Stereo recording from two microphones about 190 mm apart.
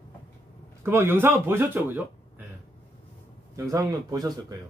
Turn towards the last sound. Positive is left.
turn(degrees=-20)  # may be behind; listen again after turning